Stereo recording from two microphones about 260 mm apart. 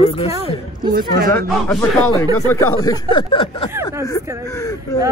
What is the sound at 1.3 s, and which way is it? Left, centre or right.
A man's voice, centre.